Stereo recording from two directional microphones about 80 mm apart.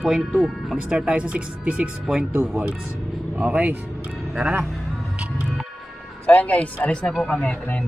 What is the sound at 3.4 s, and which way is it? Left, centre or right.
Speech, centre.